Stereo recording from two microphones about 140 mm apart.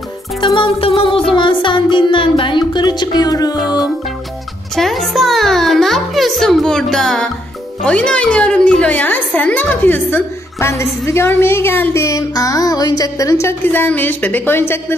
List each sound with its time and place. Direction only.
0.6 s music: 40° left (ahead or behind)
4.7 s music: centre (ahead or behind)
7.8 s a woman's voice: 5° left (ahead or behind)